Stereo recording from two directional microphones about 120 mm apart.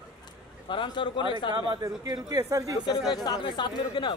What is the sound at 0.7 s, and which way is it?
Speech, 40° left (ahead or behind).